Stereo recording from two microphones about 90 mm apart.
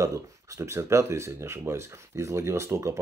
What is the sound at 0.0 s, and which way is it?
Speech, 35° right (ahead or behind).